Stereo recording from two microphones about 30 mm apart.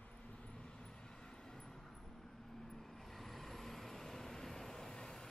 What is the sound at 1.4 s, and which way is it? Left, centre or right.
Vehicle, left.